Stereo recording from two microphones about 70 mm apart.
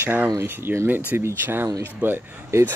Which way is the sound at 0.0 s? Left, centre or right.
Right.